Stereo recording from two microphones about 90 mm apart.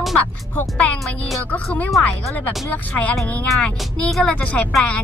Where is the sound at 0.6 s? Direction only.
20° left (ahead or behind).